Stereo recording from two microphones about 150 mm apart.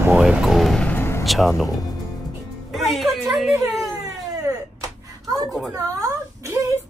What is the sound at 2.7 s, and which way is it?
Music, centre (ahead or behind).